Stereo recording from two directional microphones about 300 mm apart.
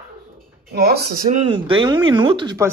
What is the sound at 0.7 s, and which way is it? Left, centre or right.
Speech, right.